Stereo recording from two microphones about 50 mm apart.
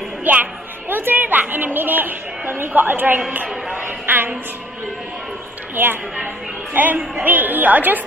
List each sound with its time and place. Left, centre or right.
0.2 s a woman's voice: right
3.7 s a sound: right
5.8 s a woman's voice: right